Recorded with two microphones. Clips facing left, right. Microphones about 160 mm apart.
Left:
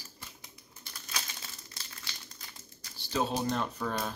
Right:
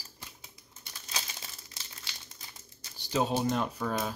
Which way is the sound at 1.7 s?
20° right (ahead or behind).